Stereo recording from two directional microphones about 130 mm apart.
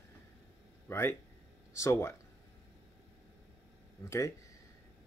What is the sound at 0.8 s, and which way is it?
Speech, 20° left (ahead or behind).